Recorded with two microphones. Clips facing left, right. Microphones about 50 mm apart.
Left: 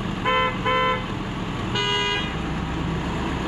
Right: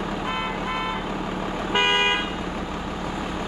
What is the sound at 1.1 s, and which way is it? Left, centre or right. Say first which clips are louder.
Vehicle: right 1 dB; right.